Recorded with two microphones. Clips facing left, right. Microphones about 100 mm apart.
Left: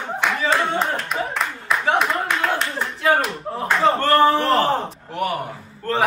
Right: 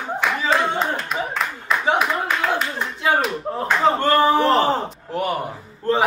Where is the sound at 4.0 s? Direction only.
20° right (ahead or behind).